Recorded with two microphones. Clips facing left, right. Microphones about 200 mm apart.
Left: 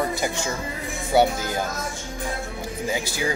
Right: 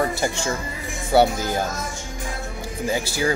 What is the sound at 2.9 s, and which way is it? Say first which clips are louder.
Speech: right 4 dB; 15° left (ahead or behind).